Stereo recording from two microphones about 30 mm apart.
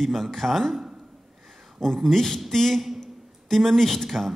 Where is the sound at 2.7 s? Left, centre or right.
Centre.